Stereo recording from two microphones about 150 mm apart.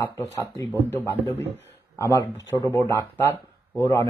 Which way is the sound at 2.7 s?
15° left (ahead or behind).